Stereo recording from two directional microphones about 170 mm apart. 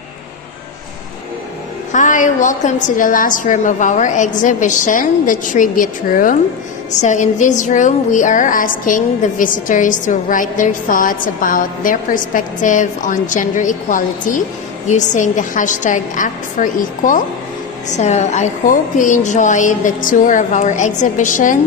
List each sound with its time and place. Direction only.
1.9 s a woman's voice: 50° left (ahead or behind)